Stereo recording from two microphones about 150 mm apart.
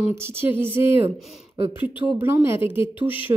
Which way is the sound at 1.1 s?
Centre (ahead or behind).